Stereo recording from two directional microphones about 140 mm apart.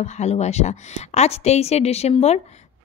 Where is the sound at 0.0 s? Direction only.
55° left (ahead or behind).